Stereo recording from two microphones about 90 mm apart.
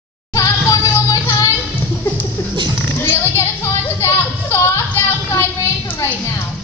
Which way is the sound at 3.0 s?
30° left (ahead or behind).